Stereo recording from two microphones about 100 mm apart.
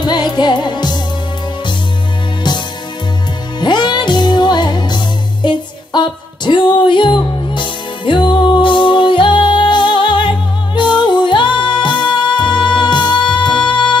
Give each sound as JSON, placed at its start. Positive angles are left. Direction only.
{"t": 0.0, "sound": "music", "side_deg": 45}
{"t": 3.5, "sound": "music", "side_deg": 50}